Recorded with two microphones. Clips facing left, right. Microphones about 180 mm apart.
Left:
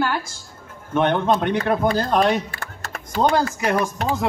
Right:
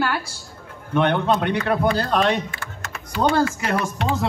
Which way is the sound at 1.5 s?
40° left (ahead or behind).